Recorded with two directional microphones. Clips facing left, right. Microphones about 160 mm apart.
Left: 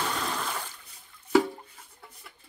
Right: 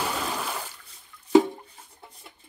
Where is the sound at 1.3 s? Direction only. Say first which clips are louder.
Right 5 dB; 20° right (ahead or behind).